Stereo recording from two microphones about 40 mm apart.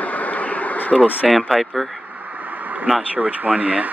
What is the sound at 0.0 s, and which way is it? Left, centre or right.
Bee, left.